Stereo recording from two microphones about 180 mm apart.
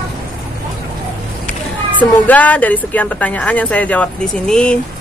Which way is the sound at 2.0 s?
10° left (ahead or behind).